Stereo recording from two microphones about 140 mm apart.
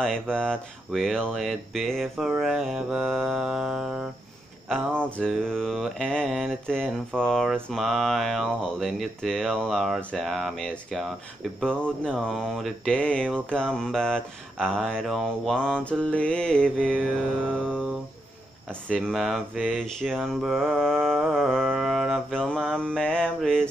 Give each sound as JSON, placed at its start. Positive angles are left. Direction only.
{"t": 0.0, "sound": "mantra", "side_deg": 5}
{"t": 4.6, "sound": "mantra", "side_deg": 5}